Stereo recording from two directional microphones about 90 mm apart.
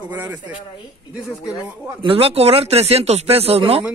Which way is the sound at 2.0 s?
90° right.